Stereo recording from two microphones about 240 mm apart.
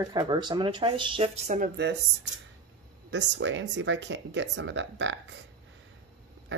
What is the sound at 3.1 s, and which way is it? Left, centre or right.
Speech, right.